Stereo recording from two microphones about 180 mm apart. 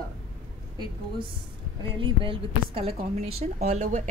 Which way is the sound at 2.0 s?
30° right (ahead or behind).